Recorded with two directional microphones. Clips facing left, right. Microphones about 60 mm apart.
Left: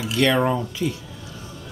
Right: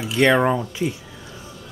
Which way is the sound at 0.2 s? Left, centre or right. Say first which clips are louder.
Right 3 dB; right.